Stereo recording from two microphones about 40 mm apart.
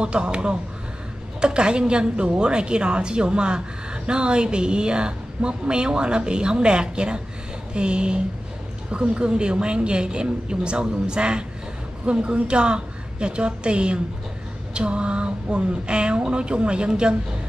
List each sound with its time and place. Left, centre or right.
0.0 s a woman's voice: right